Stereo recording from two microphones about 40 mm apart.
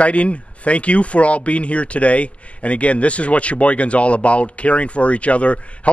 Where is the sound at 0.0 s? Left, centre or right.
Left.